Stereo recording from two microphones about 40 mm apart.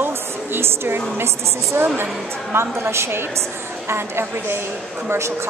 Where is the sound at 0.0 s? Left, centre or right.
Right.